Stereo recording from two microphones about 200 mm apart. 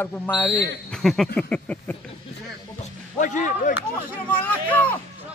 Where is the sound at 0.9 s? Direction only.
Centre (ahead or behind).